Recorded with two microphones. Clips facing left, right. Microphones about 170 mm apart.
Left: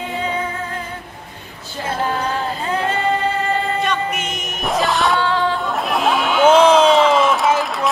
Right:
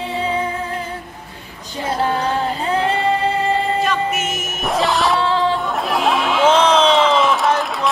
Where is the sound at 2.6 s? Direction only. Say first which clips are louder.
Right 2 dB; 30° right (ahead or behind).